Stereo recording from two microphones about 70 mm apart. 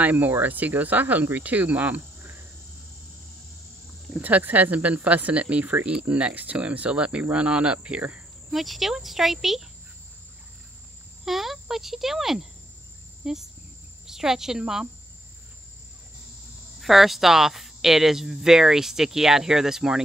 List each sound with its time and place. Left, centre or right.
0.0 s speech: right
4.1 s speech: right
8.5 s speech: centre
11.2 s speech: centre
16.8 s speech: centre